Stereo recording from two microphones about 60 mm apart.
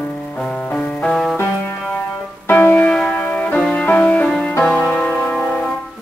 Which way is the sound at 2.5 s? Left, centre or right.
Left.